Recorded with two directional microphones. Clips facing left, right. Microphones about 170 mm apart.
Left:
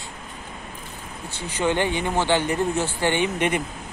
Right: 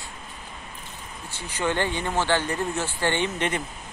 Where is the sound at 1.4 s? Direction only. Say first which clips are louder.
Left 3 dB; 20° left (ahead or behind).